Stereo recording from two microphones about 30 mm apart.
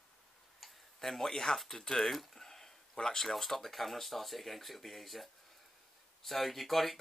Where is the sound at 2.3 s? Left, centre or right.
Centre.